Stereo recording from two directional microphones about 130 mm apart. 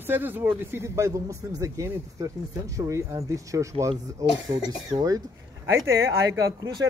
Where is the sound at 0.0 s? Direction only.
15° right (ahead or behind).